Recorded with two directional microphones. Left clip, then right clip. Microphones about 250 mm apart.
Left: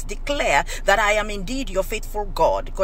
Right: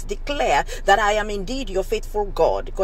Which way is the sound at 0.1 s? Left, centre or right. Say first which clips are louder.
Even; centre.